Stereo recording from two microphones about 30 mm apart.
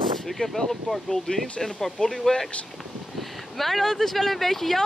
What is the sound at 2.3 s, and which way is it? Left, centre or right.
Speech, left.